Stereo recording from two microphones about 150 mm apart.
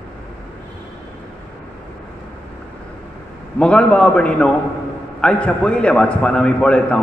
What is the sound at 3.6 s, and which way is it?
Speech, 5° left (ahead or behind).